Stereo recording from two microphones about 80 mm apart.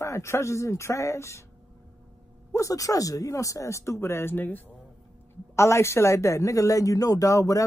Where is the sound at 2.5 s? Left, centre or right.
Left.